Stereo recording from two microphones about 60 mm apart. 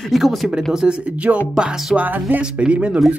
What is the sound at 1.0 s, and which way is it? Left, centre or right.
Speech, right.